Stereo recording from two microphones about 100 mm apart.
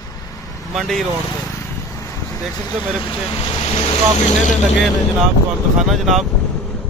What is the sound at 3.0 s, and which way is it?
Speech, 60° left (ahead or behind).